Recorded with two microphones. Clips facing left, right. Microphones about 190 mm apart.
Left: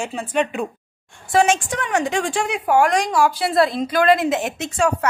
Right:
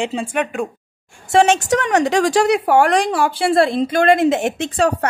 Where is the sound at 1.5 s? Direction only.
75° right (ahead or behind).